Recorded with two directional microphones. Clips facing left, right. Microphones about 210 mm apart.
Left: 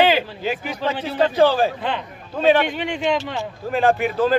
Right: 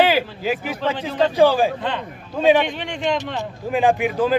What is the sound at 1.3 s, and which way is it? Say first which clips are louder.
Speech: right 1 dB; 10° right (ahead or behind).